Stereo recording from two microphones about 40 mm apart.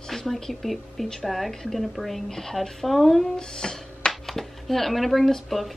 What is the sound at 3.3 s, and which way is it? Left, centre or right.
Speech, centre.